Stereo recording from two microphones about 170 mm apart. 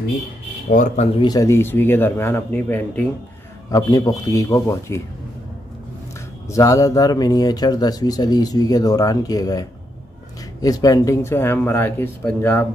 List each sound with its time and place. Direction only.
0.7 s speech: 50° left (ahead or behind)
1.2 s speech: 20° left (ahead or behind)
3.7 s a man's voice: 20° left (ahead or behind)
6.5 s a man's voice: 20° left (ahead or behind)